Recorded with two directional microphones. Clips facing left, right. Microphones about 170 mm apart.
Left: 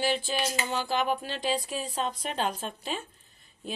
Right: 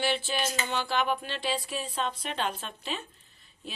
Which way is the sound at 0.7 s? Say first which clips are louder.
Even; 40° left (ahead or behind).